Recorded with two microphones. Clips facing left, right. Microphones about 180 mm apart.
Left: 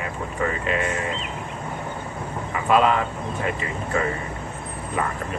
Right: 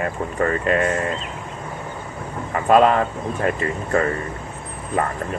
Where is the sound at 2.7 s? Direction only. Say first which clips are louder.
Right 4 dB; 45° right (ahead or behind).